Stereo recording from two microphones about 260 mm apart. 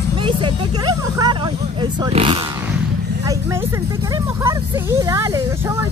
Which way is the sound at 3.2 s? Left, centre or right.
Centre.